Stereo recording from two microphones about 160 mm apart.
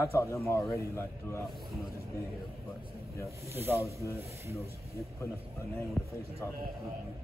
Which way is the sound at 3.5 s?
15° right (ahead or behind).